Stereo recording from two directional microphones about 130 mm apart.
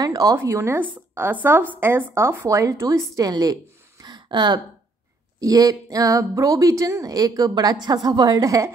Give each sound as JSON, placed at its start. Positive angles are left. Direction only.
{"t": 0.0, "sound": "a woman's voice", "side_deg": -30}
{"t": 4.0, "sound": "a sound", "side_deg": -35}
{"t": 5.4, "sound": "a woman's voice", "side_deg": -30}